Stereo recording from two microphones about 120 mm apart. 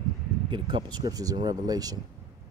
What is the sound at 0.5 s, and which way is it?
Speech, 40° right (ahead or behind).